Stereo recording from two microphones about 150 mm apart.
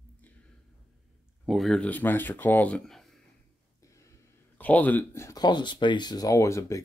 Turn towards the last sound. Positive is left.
turn(degrees=20)  # may be behind; listen again after turning